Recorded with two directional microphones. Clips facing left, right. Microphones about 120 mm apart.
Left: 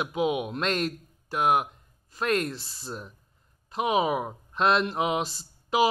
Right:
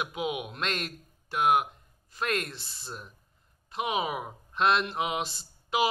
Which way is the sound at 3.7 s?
35° left (ahead or behind).